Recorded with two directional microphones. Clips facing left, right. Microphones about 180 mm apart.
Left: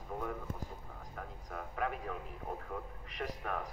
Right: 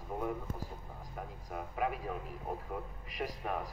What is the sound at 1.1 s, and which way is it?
Speech, 15° right (ahead or behind).